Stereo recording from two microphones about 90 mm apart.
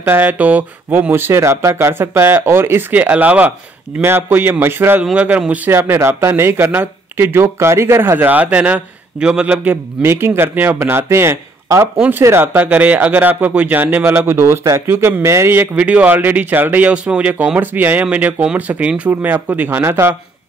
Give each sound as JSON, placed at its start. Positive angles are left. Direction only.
{"t": 0.0, "sound": "speech", "side_deg": -20}
{"t": 10.0, "sound": "speech", "side_deg": -25}
{"t": 12.5, "sound": "speech", "side_deg": -15}
{"t": 15.7, "sound": "speech", "side_deg": -15}